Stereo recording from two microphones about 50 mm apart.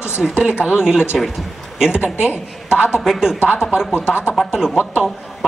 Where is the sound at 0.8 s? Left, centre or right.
Centre.